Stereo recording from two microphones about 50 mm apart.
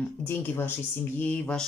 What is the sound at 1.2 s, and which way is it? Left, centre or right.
Speech, left.